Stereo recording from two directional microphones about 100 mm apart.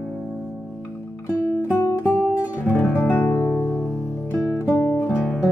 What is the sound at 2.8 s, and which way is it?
Music, 15° left (ahead or behind).